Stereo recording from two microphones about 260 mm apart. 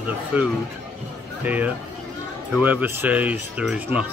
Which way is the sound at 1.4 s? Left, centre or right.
Centre.